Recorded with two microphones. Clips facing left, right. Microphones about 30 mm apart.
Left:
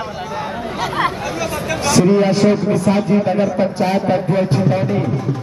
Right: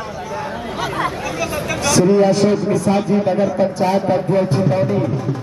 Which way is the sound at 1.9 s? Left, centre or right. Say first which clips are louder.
Right 1 dB; left.